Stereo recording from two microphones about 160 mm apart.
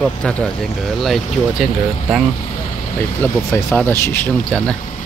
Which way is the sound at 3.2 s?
10° left (ahead or behind).